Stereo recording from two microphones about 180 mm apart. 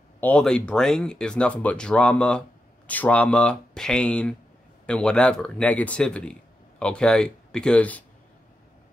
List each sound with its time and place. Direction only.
0.2 s speech: 5° left (ahead or behind)